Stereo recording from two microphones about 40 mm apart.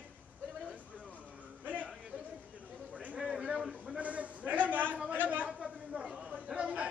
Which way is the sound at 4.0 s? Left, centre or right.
Right.